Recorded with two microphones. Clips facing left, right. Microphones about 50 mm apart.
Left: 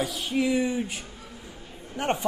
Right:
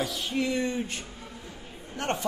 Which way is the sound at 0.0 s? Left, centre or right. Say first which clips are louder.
Left 3 dB; centre.